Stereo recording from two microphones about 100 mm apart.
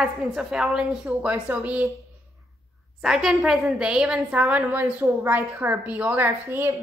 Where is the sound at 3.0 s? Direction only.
5° right (ahead or behind).